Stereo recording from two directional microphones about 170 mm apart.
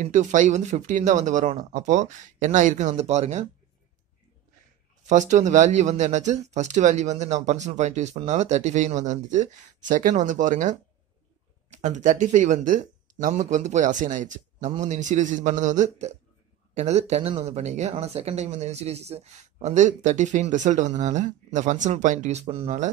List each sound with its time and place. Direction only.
0.0 s speech: 45° right (ahead or behind)
5.0 s speech: 45° right (ahead or behind)
11.8 s speech: 45° right (ahead or behind)